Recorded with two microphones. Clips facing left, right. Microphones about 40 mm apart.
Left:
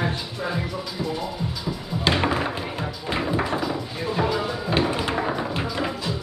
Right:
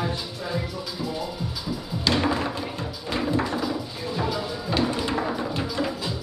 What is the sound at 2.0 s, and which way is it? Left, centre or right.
Music, left.